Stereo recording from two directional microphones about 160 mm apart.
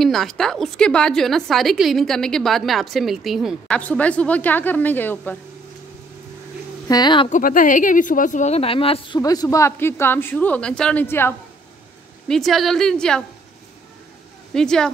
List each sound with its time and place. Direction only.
0.0 s a woman's voice: centre (ahead or behind)
6.9 s speech: 25° left (ahead or behind)
7.2 s speech: 55° left (ahead or behind); by 11.3 s 15° left (ahead or behind)
12.3 s a woman's voice: centre (ahead or behind)
14.5 s a woman's voice: 5° left (ahead or behind)